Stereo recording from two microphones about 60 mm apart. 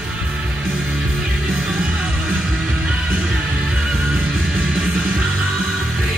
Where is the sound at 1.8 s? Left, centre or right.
Centre.